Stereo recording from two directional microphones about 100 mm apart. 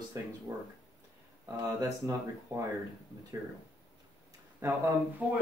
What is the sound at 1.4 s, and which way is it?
Speech, 35° right (ahead or behind).